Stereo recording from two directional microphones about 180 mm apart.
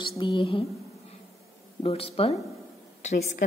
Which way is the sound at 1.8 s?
35° left (ahead or behind).